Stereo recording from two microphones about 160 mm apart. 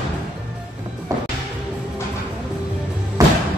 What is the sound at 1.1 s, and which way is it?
Music, 20° right (ahead or behind).